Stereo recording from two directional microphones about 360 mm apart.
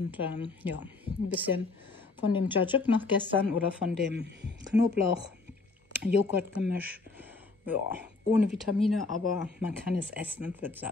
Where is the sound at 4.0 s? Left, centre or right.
Right.